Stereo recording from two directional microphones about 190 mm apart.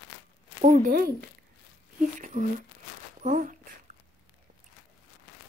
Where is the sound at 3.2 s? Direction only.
45° right (ahead or behind).